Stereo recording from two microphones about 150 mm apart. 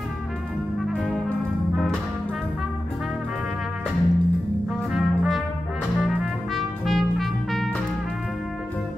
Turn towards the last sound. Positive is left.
turn(degrees=0)  # may be behind; listen again after turning